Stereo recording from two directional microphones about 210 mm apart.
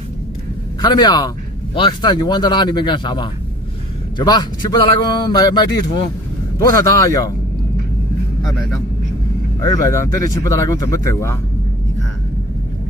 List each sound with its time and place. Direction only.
0.7 s speech: 20° left (ahead or behind)
6.7 s speech: 15° left (ahead or behind)
8.4 s speech: centre (ahead or behind)
9.6 s speech: 15° left (ahead or behind)